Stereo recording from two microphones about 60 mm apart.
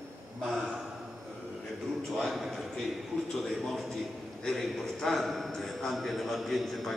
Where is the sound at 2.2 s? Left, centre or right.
Centre.